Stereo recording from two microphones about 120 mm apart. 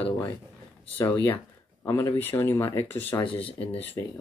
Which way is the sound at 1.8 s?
25° left (ahead or behind).